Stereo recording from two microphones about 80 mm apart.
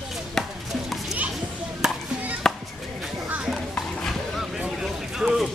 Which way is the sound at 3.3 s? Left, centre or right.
Centre.